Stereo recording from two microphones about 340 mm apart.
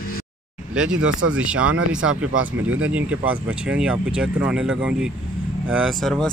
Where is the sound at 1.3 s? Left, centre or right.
Centre.